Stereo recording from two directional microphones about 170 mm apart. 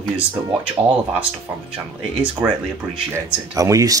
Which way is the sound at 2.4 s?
10° right (ahead or behind).